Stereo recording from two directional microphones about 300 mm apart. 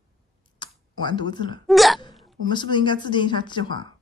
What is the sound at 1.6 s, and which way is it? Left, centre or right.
Hiccup, centre.